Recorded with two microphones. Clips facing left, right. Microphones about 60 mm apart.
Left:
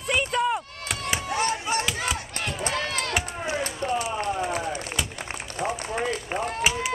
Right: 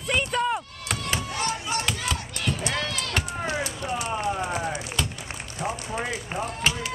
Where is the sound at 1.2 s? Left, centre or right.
Left.